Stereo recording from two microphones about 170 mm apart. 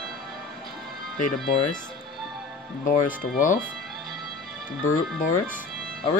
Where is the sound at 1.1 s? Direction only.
50° left (ahead or behind).